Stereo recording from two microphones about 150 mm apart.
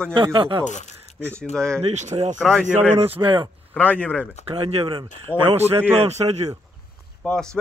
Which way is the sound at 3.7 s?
10° left (ahead or behind).